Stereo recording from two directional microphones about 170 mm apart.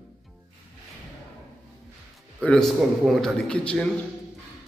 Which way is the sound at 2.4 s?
5° left (ahead or behind).